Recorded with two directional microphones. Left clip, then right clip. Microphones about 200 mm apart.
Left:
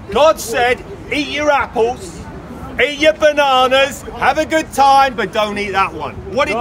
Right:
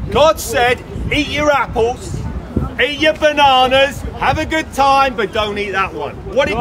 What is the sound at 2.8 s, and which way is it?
A man's voice, 40° left (ahead or behind).